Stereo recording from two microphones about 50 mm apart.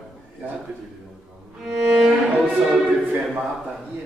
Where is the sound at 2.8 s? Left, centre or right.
Right.